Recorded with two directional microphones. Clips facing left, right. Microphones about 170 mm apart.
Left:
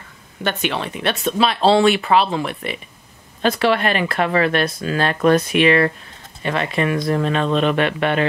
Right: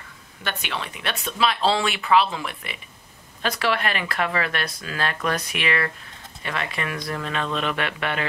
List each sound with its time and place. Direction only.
1.0 s speech: 30° left (ahead or behind)